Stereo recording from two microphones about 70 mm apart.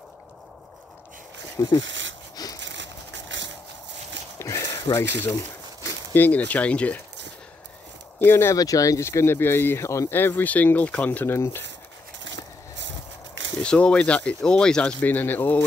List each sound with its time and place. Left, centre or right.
1.6 s speech: left
2.4 s a sound: left
4.4 s a sound: left
4.9 s speech: left
6.1 s speech: left
8.2 s speech: left
8.5 s speech: left
9.8 s speech: left
10.1 s speech: left
11.1 s speech: left
13.6 s speech: centre